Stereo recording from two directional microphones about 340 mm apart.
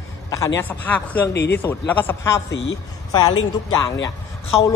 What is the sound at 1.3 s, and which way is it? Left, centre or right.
Speech, left.